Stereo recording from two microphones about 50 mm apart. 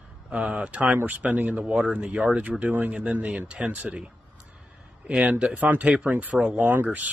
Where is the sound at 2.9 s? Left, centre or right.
Right.